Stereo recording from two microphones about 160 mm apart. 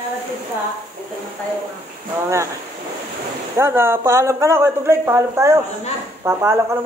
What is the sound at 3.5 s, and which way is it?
A man's voice, 15° right (ahead or behind).